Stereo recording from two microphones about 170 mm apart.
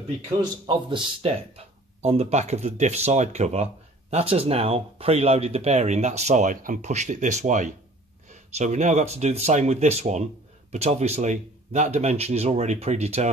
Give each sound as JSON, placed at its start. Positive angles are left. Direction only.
{"t": 0.4, "sound": "speech", "side_deg": -25}
{"t": 2.0, "sound": "speech", "side_deg": -40}